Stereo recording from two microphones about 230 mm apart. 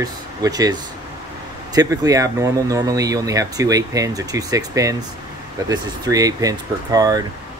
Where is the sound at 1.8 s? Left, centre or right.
Centre.